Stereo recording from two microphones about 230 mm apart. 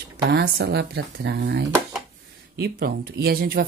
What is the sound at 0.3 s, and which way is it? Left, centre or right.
Speech, right.